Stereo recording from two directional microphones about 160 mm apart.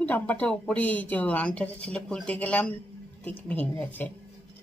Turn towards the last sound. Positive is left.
turn(degrees=10)  # may be behind; listen again after turning